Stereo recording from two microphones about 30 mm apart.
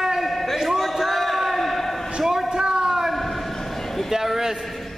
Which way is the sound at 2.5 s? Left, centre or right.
Right.